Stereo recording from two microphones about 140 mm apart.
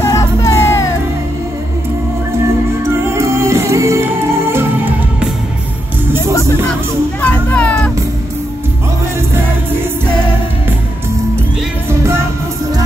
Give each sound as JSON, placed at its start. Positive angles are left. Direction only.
{"t": 0.0, "sound": "music", "side_deg": 25}
{"t": 2.8, "sound": "music", "side_deg": -20}
{"t": 7.2, "sound": "music", "side_deg": 10}